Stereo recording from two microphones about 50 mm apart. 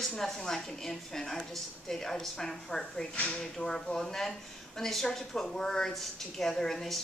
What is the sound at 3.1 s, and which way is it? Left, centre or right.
Speech, left.